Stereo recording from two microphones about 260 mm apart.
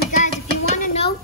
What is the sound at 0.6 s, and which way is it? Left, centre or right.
Dishes, left.